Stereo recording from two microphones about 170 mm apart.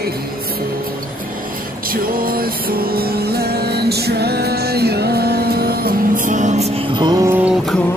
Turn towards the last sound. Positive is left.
turn(degrees=-5)  # may be behind; listen again after turning